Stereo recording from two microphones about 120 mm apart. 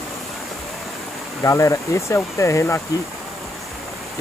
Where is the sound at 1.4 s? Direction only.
25° left (ahead or behind).